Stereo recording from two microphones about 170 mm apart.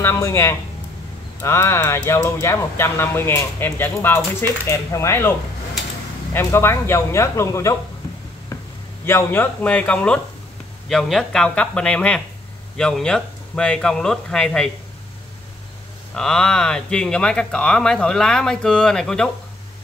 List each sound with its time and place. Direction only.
0.0 s speech: 15° left (ahead or behind)
6.3 s speech: 15° left (ahead or behind)
9.0 s speech: 15° left (ahead or behind)
16.2 s speech: 5° left (ahead or behind)